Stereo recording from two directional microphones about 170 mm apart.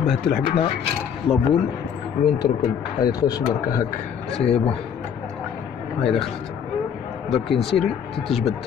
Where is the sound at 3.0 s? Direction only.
20° left (ahead or behind).